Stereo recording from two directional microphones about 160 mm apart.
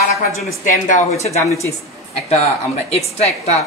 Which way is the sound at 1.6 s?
40° left (ahead or behind).